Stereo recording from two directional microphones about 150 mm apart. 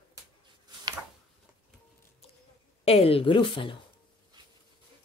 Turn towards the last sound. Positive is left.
turn(degrees=35)  # may be behind; listen again after turning